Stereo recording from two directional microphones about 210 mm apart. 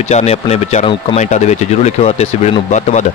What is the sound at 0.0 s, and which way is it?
Speech, 30° left (ahead or behind).